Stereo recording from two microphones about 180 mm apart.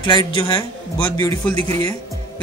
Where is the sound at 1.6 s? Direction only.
35° right (ahead or behind).